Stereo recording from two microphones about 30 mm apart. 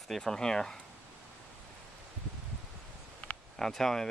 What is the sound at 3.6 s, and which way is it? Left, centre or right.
Speech, centre.